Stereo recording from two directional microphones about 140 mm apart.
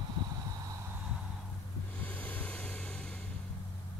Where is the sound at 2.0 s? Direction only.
10° left (ahead or behind).